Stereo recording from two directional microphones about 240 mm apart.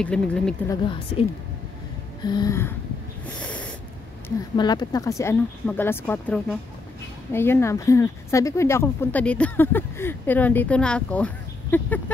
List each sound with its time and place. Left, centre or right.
0.0 s speech: centre
2.2 s speech: centre
3.3 s snort: centre
4.6 s speech: centre